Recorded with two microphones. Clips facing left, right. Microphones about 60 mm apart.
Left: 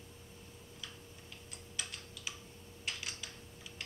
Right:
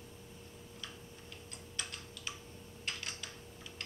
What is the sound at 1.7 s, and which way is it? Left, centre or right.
Tick-tock, centre.